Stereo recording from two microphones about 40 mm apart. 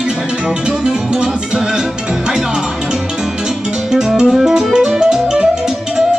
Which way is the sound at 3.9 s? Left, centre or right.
Centre.